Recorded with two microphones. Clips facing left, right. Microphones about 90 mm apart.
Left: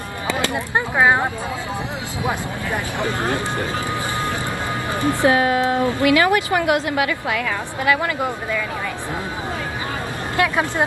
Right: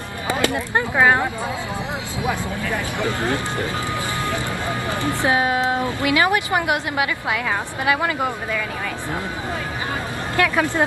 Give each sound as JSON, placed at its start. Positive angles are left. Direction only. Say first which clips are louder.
{"t": 0.4, "sound": "speech", "louder": "right 2 dB", "side_deg": 15}
{"t": 5.2, "sound": "a woman's voice", "louder": "left 3 dB", "side_deg": -20}
{"t": 10.3, "sound": "speech", "louder": "even", "side_deg": 20}